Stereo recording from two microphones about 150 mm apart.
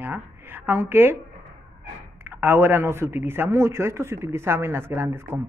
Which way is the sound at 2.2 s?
15° right (ahead or behind).